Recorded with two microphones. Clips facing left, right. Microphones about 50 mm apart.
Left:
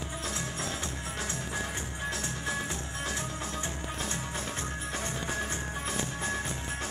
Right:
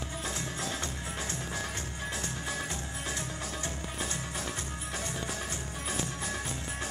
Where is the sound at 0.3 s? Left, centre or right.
Centre.